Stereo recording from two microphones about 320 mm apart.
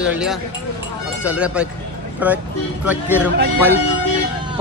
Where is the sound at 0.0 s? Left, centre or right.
Centre.